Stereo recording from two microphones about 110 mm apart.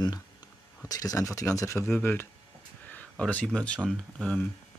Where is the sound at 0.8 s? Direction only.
35° left (ahead or behind).